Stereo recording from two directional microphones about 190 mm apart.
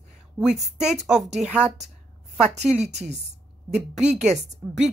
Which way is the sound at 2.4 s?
35° right (ahead or behind).